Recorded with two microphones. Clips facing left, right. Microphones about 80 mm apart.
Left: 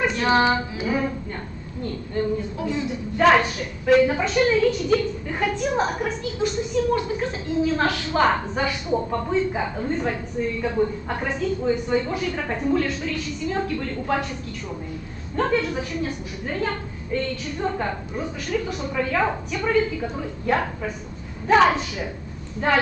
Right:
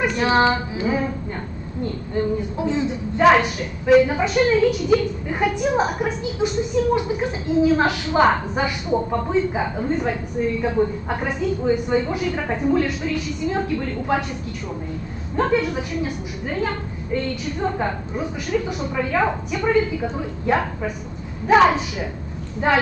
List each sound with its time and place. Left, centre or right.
0.0 s child singing: centre
2.6 s child singing: right
3.2 s a woman's voice: centre
15.3 s a woman's voice: centre